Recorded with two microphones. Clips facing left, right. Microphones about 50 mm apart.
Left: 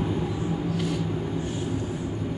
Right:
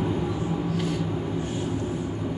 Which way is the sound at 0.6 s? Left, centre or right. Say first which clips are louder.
Even; right.